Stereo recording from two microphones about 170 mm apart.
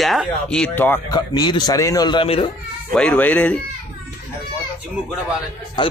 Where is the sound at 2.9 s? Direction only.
10° left (ahead or behind).